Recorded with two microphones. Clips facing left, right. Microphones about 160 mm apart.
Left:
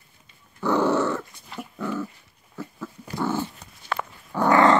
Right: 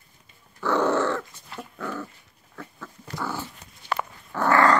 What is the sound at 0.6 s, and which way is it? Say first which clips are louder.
Dog: left 1 dB; 15° left (ahead or behind).